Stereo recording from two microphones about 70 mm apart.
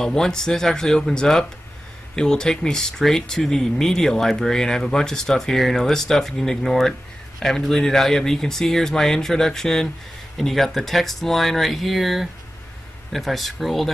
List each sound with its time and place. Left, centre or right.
0.0 s speech: centre